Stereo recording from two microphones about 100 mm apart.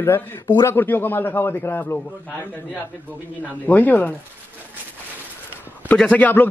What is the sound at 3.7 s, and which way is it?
Speech, 15° left (ahead or behind).